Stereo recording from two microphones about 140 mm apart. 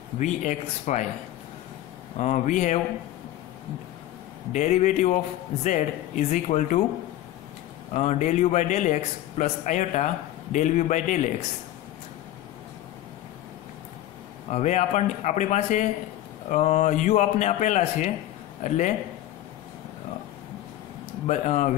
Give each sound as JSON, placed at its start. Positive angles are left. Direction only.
{"t": 0.2, "sound": "a man's voice", "side_deg": 60}
{"t": 2.1, "sound": "a man's voice", "side_deg": 60}
{"t": 4.5, "sound": "a man's voice", "side_deg": 60}
{"t": 7.9, "sound": "a man's voice", "side_deg": 60}
{"t": 14.5, "sound": "a man's voice", "side_deg": 60}
{"t": 21.3, "sound": "a man's voice", "side_deg": 60}